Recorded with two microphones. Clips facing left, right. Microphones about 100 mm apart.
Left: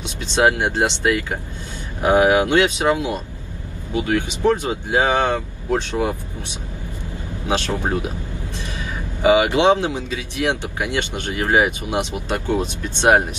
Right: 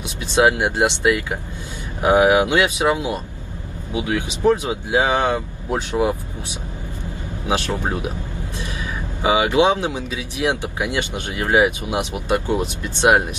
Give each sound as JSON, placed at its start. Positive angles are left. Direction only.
{"t": 0.2, "sound": "speech", "side_deg": -15}
{"t": 7.4, "sound": "speech", "side_deg": -15}
{"t": 9.2, "sound": "speech", "side_deg": -20}